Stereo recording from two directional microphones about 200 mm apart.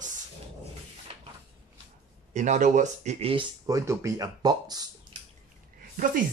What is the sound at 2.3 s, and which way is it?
Speech, 35° right (ahead or behind).